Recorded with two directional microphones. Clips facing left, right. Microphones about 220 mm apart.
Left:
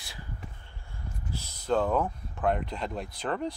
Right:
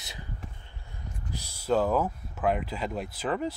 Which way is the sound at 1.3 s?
15° right (ahead or behind).